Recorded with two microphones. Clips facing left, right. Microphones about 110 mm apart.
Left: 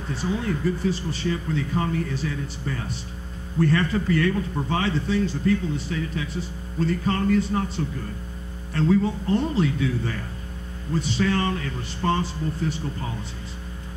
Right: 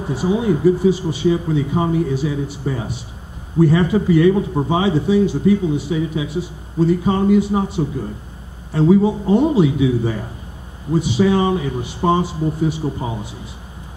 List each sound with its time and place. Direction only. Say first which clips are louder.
0.3 s speech: right 10 dB; 15° right (ahead or behind)
11.0 s speech: right 8 dB; 5° right (ahead or behind)